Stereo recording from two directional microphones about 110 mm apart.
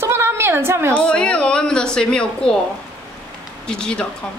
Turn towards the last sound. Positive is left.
turn(degrees=10)  # may be behind; listen again after turning